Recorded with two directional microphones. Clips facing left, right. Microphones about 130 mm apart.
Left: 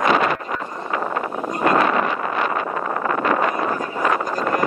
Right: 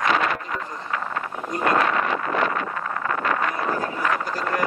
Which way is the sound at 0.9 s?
20° left (ahead or behind).